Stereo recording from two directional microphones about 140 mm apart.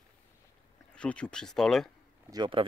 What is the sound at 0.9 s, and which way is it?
Speech, 10° left (ahead or behind).